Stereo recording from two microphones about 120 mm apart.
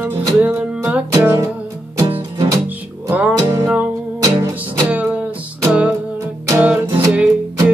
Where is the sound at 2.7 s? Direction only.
15° right (ahead or behind).